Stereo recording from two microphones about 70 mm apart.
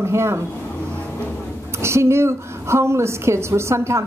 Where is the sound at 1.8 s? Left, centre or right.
Right.